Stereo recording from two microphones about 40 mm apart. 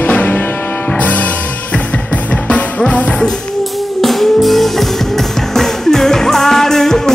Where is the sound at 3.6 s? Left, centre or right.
Centre.